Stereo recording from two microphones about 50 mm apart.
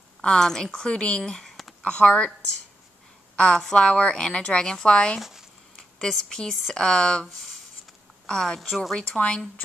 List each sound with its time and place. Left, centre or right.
0.2 s speech: centre
3.3 s a woman's voice: centre
5.8 s a sound: centre
6.7 s speech: centre
8.5 s a woman's voice: centre
8.9 s speech: centre